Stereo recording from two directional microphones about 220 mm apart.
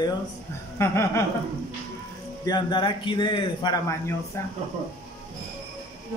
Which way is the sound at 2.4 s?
20° left (ahead or behind).